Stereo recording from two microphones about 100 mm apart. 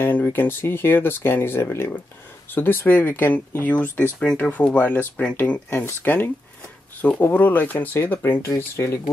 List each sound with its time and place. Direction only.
0.0 s speech: 20° left (ahead or behind)